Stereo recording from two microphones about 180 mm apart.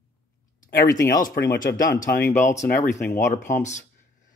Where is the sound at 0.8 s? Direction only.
20° left (ahead or behind).